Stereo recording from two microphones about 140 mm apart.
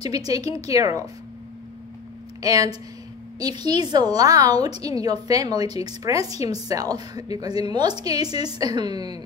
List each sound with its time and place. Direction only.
0.0 s a woman's voice: 25° right (ahead or behind)
2.4 s a woman's voice: 25° right (ahead or behind)